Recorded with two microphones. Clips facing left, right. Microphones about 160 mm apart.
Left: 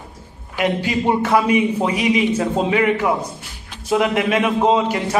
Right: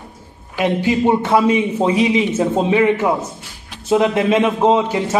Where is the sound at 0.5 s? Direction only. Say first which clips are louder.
Right 3 dB; 25° right (ahead or behind).